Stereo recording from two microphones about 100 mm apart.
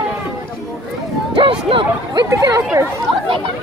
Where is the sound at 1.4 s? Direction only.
60° right (ahead or behind).